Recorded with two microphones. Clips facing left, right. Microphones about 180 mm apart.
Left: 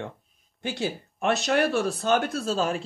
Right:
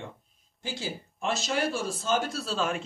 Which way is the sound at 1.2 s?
65° left (ahead or behind).